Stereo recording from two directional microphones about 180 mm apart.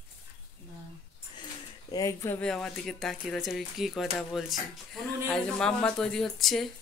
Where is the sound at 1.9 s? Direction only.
15° left (ahead or behind).